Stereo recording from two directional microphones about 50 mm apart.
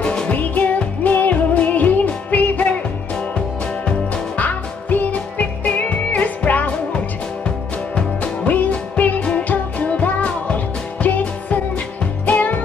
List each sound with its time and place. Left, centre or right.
0.0 s music: centre
0.3 s music: left
4.4 s music: left
8.5 s music: left